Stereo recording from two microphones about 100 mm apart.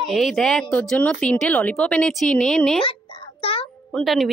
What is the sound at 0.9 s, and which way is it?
A woman's voice, 15° left (ahead or behind).